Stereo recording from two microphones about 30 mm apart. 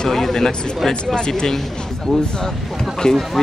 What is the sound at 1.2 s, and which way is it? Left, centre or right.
Speech, left.